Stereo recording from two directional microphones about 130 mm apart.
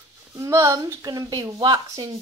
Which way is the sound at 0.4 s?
25° right (ahead or behind).